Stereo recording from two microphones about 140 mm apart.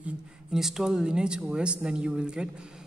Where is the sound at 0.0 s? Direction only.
5° right (ahead or behind).